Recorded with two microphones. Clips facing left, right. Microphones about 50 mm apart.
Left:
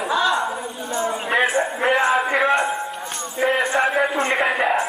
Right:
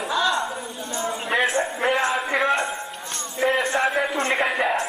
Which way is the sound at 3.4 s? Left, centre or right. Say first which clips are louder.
Left 2 dB; centre.